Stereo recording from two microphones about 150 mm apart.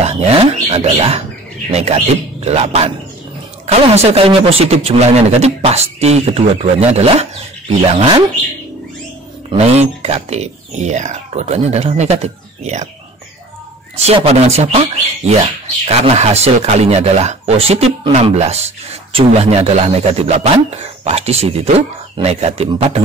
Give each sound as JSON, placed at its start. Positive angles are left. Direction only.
{"t": 0.0, "sound": "speech", "side_deg": -45}
{"t": 9.5, "sound": "speech", "side_deg": -45}
{"t": 13.9, "sound": "speech", "side_deg": -45}